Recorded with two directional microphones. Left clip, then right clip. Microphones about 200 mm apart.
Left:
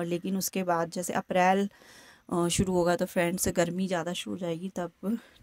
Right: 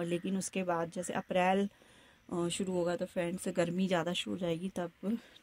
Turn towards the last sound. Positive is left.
turn(degrees=15)  # may be behind; listen again after turning